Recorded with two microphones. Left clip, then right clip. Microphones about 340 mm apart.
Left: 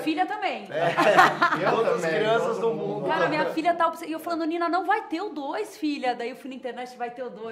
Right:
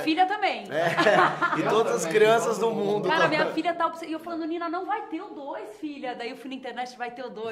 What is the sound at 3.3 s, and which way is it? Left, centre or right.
A woman's voice, centre.